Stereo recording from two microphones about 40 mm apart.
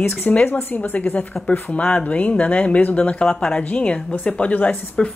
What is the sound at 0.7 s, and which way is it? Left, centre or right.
Speech, left.